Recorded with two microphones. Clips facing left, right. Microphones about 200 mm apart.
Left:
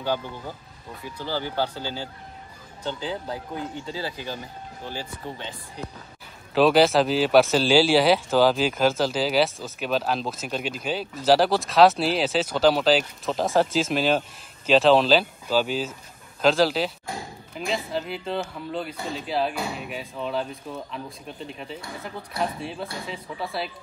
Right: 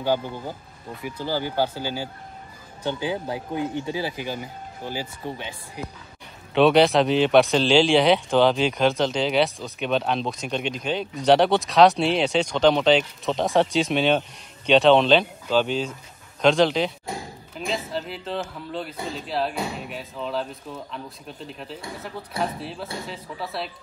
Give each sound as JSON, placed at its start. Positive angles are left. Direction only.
{"t": 1.2, "sound": "speech", "side_deg": -15}
{"t": 6.5, "sound": "speech", "side_deg": 0}